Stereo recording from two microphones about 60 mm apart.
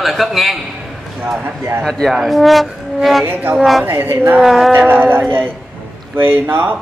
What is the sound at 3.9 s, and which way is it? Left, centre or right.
Speech, right.